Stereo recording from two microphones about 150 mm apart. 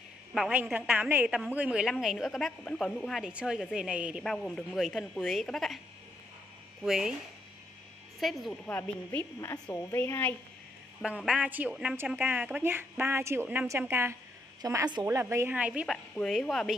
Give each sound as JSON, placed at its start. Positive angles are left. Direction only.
{"t": 0.3, "sound": "a woman's voice", "side_deg": -5}
{"t": 6.8, "sound": "a woman's voice", "side_deg": -5}
{"t": 8.2, "sound": "a woman's voice", "side_deg": 0}
{"t": 8.6, "sound": "a woman's voice", "side_deg": 10}
{"t": 11.0, "sound": "a woman's voice", "side_deg": -5}